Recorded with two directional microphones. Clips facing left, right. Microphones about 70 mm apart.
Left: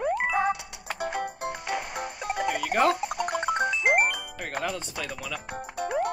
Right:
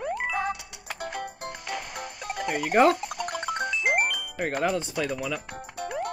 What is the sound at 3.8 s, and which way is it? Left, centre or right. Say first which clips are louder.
Music: left 1 dB; left.